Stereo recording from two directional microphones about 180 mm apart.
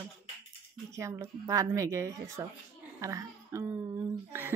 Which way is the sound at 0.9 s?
15° right (ahead or behind).